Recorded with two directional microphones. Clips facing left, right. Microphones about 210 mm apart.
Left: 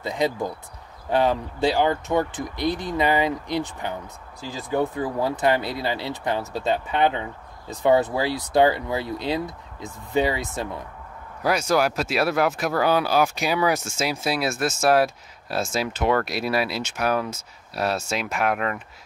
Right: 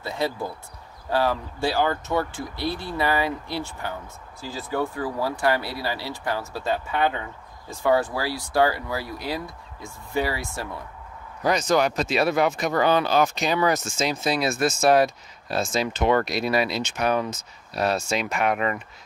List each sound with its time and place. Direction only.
0.0 s speech: 15° left (ahead or behind)
11.4 s speech: 5° left (ahead or behind)